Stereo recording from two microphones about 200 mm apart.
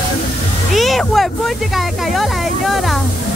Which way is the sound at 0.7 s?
Centre (ahead or behind).